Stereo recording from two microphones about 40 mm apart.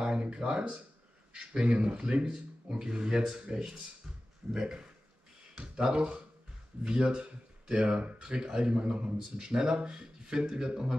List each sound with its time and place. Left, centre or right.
0.0 s a man's voice: right